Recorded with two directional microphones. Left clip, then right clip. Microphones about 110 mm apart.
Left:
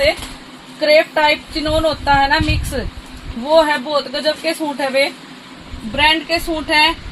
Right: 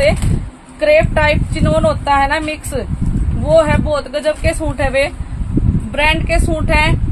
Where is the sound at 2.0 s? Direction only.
40° right (ahead or behind).